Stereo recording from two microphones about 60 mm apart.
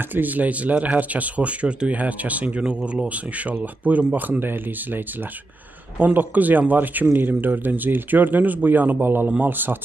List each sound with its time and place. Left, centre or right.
0.1 s speech: right